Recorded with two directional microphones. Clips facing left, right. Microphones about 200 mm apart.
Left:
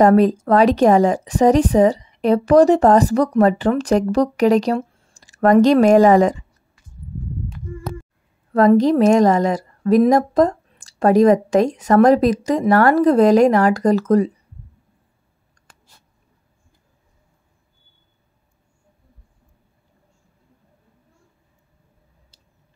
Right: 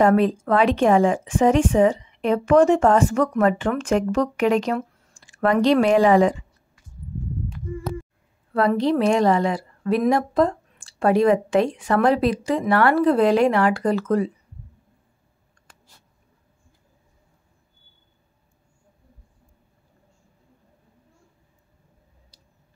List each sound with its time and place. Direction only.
0.0 s a woman's voice: 40° left (ahead or behind)
8.5 s a woman's voice: 45° left (ahead or behind)
22.3 s a sound: 25° left (ahead or behind)